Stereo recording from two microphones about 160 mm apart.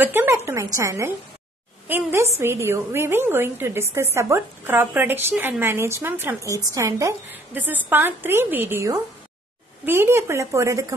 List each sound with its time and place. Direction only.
0.0 s a woman's voice: 15° right (ahead or behind)